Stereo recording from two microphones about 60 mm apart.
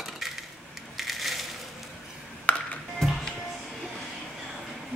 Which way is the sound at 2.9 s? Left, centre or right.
Centre.